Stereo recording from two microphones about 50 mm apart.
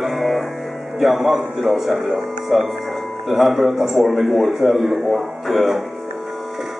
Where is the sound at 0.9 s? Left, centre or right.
Centre.